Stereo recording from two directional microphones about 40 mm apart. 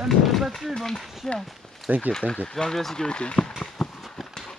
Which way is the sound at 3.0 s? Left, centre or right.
Left.